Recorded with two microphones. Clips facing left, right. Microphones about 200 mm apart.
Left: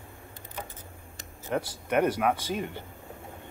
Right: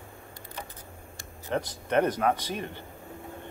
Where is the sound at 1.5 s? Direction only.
10° left (ahead or behind).